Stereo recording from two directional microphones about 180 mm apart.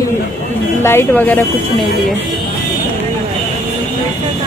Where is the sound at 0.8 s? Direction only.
10° left (ahead or behind).